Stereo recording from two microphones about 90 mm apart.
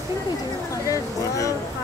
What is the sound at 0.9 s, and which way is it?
Speech, 35° left (ahead or behind).